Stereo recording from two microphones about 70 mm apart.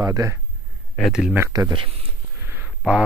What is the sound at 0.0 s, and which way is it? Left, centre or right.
Speech, right.